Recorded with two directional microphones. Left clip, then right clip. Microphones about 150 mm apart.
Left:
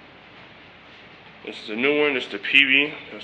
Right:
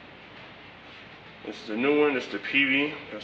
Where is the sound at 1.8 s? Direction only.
20° left (ahead or behind).